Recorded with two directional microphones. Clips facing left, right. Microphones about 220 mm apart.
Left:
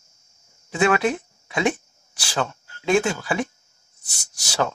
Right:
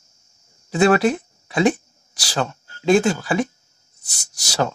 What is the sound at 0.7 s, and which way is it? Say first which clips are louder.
Speech: right 4 dB; 35° right (ahead or behind).